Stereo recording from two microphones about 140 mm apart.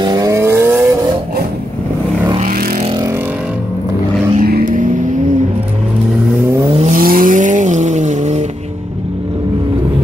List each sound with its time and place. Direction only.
0.0 s vehicle: 25° right (ahead or behind)
2.4 s vehicle: 90° right
4.4 s vehicle: 80° right
6.8 s vehicle: 80° right; by 8.5 s 55° right (ahead or behind)